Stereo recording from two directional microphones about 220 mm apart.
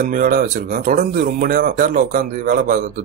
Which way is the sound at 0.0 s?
40° right (ahead or behind).